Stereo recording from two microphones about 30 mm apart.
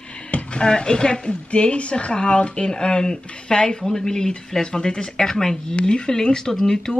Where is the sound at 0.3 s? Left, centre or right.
Left.